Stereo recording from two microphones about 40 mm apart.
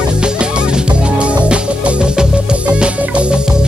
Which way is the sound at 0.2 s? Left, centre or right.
Right.